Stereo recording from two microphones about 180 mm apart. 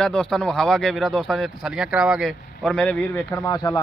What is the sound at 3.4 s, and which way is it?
Speech, 20° left (ahead or behind).